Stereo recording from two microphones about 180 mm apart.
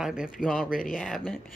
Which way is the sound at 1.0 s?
5° left (ahead or behind).